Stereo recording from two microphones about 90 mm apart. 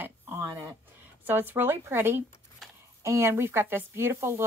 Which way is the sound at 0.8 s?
20° right (ahead or behind).